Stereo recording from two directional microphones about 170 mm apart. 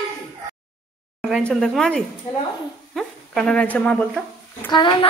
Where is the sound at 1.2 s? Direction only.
Centre (ahead or behind).